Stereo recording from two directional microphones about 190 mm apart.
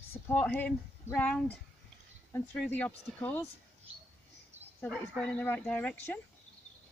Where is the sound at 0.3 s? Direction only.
10° left (ahead or behind).